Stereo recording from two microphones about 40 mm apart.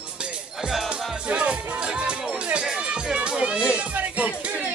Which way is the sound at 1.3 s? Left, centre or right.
Right.